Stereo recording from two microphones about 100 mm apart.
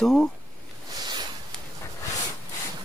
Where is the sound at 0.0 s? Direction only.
5° left (ahead or behind).